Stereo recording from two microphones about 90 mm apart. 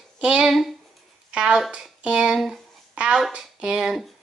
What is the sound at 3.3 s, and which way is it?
Speech, 10° right (ahead or behind).